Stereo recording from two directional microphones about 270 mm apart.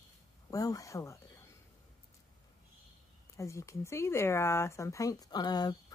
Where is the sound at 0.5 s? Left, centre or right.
Centre.